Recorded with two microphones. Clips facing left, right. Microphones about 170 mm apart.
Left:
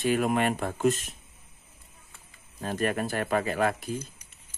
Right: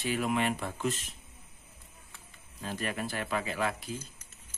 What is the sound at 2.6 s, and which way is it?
Speech, 50° left (ahead or behind).